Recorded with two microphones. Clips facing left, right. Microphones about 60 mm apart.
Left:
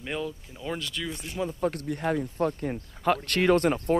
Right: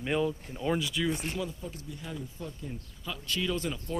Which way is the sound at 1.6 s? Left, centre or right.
Left.